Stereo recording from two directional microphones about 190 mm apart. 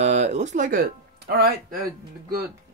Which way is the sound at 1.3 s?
50° right (ahead or behind).